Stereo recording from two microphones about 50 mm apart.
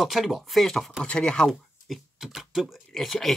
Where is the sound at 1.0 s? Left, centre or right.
Centre.